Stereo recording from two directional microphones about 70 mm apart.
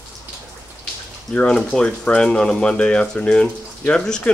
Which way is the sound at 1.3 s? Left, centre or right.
Centre.